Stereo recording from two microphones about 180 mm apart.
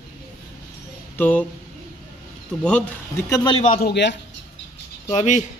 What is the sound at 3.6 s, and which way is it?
Speech, 45° left (ahead or behind).